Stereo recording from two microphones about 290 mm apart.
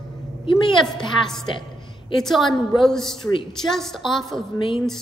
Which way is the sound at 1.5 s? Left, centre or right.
Centre.